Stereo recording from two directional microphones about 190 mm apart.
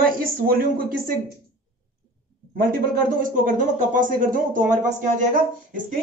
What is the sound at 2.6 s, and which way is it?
A man's voice, 50° right (ahead or behind).